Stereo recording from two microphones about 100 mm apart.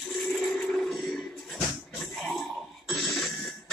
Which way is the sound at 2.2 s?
Centre (ahead or behind).